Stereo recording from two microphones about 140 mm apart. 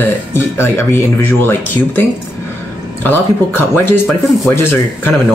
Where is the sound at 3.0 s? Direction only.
15° left (ahead or behind).